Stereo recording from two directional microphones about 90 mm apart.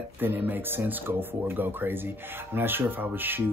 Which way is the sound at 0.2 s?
20° right (ahead or behind).